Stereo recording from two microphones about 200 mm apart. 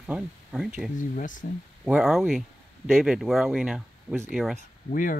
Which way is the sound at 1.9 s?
Centre (ahead or behind).